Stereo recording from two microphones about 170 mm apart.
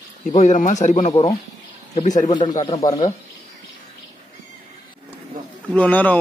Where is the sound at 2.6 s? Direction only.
25° left (ahead or behind).